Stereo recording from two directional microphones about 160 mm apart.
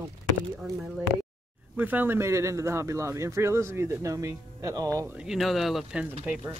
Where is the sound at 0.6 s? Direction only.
5° right (ahead or behind).